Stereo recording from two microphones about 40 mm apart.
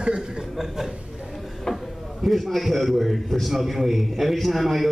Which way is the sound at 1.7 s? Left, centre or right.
Centre.